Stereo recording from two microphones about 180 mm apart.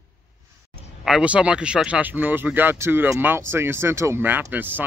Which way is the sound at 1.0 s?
5° right (ahead or behind).